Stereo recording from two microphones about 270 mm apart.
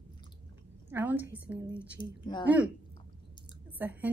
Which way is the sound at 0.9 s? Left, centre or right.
Centre.